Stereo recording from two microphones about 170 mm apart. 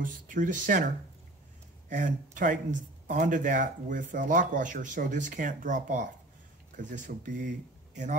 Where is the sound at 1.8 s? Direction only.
50° right (ahead or behind).